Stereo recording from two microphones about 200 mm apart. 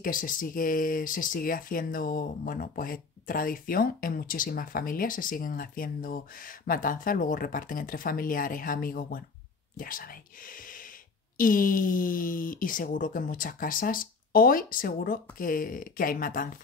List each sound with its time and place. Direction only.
0.0 s speech: 45° left (ahead or behind)